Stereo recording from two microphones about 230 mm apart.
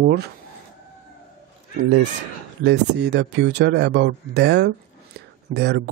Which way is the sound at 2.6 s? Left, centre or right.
Right.